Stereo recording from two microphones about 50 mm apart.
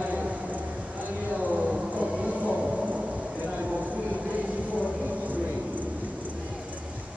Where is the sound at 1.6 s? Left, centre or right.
Centre.